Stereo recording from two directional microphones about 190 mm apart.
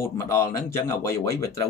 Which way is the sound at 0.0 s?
15° left (ahead or behind).